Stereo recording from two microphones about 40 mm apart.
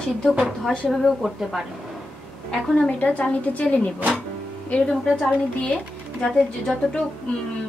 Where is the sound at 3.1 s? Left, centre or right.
Left.